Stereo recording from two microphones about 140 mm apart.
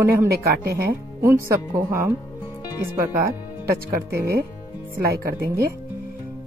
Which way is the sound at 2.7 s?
20° right (ahead or behind).